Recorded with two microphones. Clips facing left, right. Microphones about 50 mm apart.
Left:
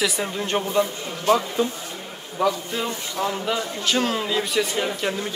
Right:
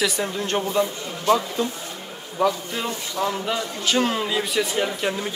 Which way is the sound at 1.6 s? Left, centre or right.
Left.